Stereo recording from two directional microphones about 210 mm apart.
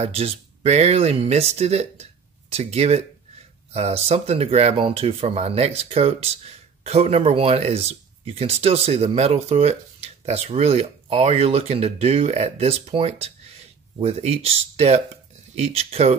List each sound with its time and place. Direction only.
0.0 s speech: 30° right (ahead or behind)